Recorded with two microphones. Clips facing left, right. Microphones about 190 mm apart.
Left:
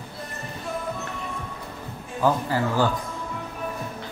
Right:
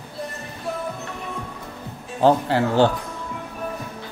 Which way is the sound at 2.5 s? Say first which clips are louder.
Right 4 dB; 70° right (ahead or behind).